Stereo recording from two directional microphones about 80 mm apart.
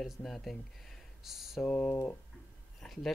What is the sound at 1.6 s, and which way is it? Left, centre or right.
Speech, centre.